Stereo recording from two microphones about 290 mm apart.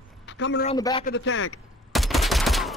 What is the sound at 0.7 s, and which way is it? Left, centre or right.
Speech, centre.